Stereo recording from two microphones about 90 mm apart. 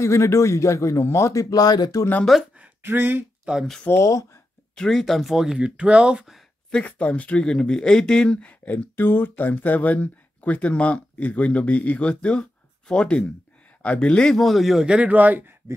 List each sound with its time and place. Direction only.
0.0 s speech: 35° left (ahead or behind)
2.5 s a sound: 20° right (ahead or behind)
3.5 s speech: 15° right (ahead or behind)
4.0 s speech: 35° left (ahead or behind)
4.7 s speech: 5° left (ahead or behind)
6.7 s speech: 15° left (ahead or behind); by 15.5 s 20° right (ahead or behind)